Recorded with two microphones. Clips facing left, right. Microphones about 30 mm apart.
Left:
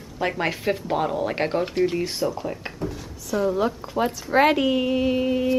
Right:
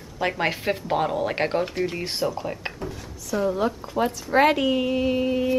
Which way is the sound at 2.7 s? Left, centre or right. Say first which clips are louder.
Left 3 dB; centre.